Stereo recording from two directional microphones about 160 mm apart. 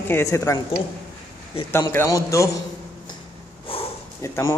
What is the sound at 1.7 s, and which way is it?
Speech, 15° left (ahead or behind).